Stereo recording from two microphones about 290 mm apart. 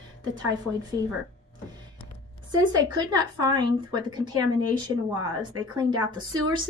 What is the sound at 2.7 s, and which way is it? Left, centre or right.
A woman's voice, centre.